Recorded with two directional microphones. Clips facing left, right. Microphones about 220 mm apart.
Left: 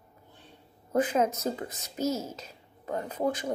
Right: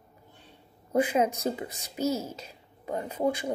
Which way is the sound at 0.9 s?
10° right (ahead or behind).